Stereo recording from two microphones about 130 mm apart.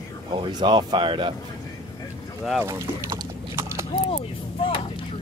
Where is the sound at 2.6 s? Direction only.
25° right (ahead or behind).